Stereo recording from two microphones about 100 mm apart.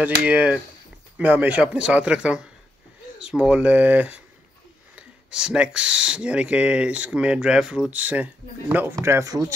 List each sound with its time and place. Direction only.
0.0 s speech: 15° right (ahead or behind)
8.9 s speech: 30° right (ahead or behind)